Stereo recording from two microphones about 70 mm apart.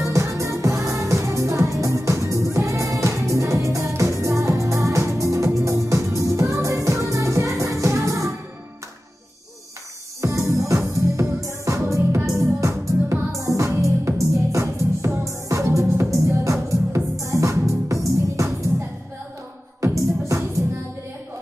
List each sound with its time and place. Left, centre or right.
0.0 s music: right
10.2 s music: right
19.8 s music: right